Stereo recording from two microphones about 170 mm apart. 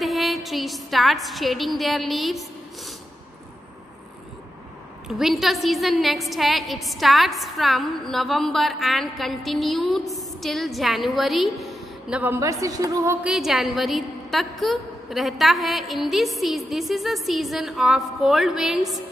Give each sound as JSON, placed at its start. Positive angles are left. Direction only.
{"t": 0.0, "sound": "a woman's voice", "side_deg": 0}
{"t": 5.0, "sound": "a woman's voice", "side_deg": 0}
{"t": 12.2, "sound": "a woman's voice", "side_deg": -15}
{"t": 13.3, "sound": "a woman's voice", "side_deg": 0}